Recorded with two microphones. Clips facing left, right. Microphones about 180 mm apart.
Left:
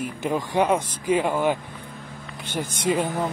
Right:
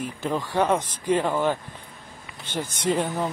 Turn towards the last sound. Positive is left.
turn(degrees=10)  # may be behind; listen again after turning